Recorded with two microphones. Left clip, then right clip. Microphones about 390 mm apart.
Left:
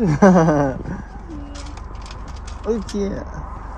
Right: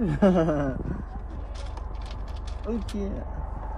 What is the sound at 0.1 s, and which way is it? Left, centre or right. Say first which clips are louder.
Speech: left 9 dB; centre.